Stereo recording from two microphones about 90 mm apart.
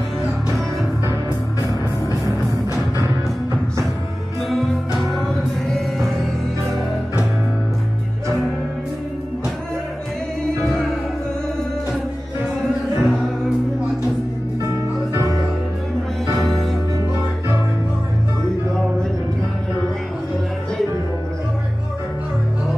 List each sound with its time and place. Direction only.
1.6 s music: 40° left (ahead or behind)
5.7 s music: 5° left (ahead or behind)
13.0 s music: centre (ahead or behind)